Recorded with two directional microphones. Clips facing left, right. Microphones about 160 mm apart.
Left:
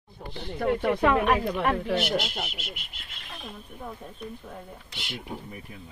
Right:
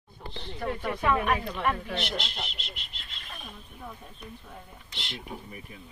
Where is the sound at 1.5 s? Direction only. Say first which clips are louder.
Left 3 dB; 50° left (ahead or behind).